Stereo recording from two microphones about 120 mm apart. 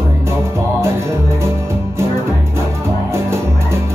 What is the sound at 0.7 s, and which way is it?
Music, 25° right (ahead or behind).